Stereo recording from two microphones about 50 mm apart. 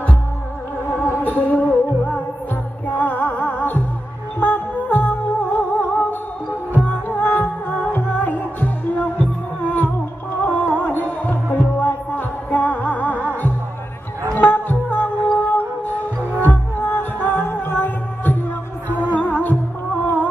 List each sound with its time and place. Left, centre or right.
1.0 s music: left
7.1 s music: left